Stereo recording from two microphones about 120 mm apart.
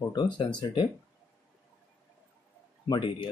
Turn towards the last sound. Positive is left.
turn(degrees=45)  # may be behind; listen again after turning